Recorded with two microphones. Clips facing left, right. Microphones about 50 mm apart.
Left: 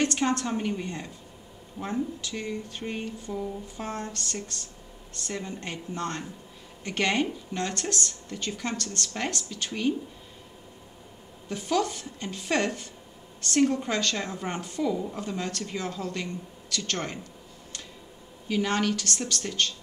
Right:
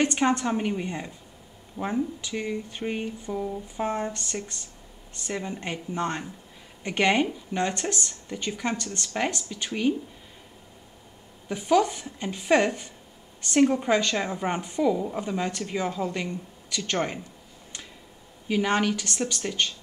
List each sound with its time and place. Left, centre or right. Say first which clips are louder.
0.0 s speech: right 3 dB; centre
11.4 s speech: right 5 dB; centre
18.5 s speech: right 2 dB; centre